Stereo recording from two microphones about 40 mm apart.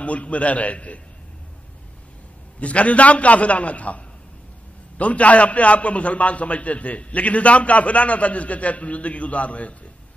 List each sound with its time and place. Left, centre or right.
0.0 s a man's voice: left
2.6 s a man's voice: left